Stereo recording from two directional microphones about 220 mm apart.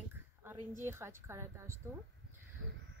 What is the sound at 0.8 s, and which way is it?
Speech, 10° right (ahead or behind).